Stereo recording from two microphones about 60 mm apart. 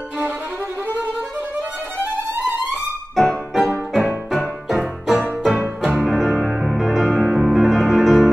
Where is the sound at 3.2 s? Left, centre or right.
Centre.